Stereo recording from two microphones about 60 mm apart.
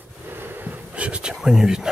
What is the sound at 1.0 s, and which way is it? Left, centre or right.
Speech, right.